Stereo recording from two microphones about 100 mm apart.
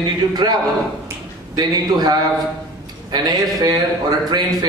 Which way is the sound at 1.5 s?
45° right (ahead or behind).